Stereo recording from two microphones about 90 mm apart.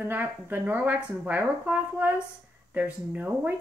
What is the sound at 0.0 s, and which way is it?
A woman's voice, 20° right (ahead or behind).